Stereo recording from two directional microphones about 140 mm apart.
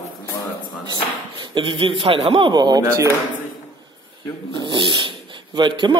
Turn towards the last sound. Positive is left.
turn(degrees=-35)  # may be behind; listen again after turning